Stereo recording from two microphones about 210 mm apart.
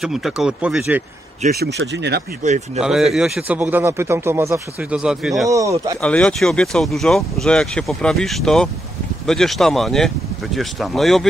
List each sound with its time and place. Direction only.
0.0 s a man's voice: centre (ahead or behind)
1.4 s speech: 35° right (ahead or behind)
1.8 s speech: 50° right (ahead or behind)
2.4 s speech: 35° right (ahead or behind)
2.8 s a man's voice: centre (ahead or behind)
5.5 s speech: 15° right (ahead or behind)
5.9 s a man's voice: 5° left (ahead or behind)